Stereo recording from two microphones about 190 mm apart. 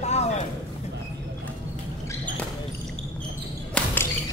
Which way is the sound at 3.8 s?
5° left (ahead or behind).